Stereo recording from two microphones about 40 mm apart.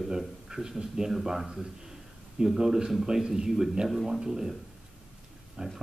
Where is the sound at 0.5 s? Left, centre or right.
Centre.